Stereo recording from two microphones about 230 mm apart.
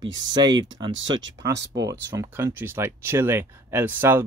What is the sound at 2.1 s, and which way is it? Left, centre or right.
Speech, centre.